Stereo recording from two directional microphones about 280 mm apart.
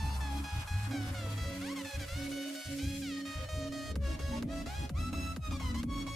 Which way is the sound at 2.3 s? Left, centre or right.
Centre.